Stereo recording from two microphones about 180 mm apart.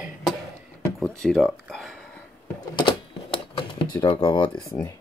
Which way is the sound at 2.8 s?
30° left (ahead or behind).